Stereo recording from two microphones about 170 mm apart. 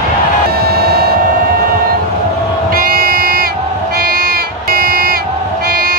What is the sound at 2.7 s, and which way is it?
Crowd, 60° right (ahead or behind).